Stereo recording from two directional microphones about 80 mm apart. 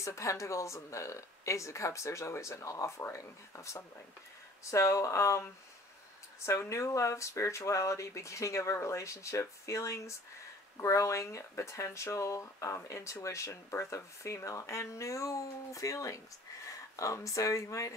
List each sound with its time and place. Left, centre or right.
0.0 s speech: left